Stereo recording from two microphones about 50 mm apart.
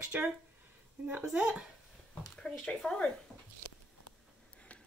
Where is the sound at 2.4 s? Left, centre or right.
Centre.